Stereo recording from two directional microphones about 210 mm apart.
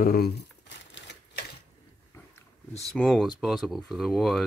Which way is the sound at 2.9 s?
Centre (ahead or behind).